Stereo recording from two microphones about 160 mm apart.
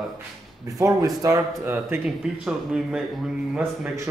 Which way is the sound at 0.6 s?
20° right (ahead or behind).